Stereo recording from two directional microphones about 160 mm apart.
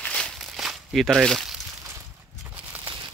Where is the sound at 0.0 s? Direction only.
5° left (ahead or behind).